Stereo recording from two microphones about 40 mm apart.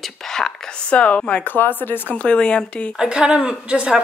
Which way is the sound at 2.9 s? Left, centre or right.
Centre.